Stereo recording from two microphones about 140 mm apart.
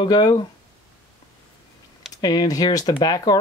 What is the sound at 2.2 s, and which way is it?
Speech, 30° left (ahead or behind).